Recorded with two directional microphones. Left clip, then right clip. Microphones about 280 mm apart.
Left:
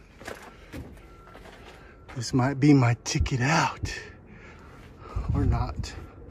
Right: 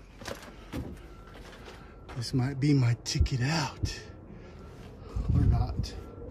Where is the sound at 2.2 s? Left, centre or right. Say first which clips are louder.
Left 8 dB; centre.